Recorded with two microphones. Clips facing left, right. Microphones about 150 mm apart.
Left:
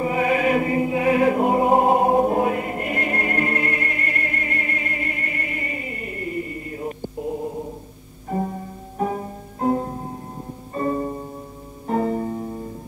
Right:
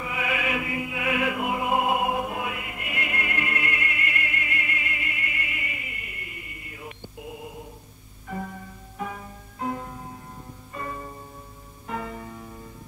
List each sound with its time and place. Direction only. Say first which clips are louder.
0.0 s music: left 10 dB; 40° left (ahead or behind)